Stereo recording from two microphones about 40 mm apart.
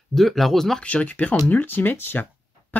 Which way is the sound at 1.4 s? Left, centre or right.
Left.